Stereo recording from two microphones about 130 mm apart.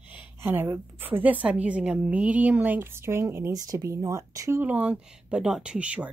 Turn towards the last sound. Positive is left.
turn(degrees=-10)  # may be behind; listen again after turning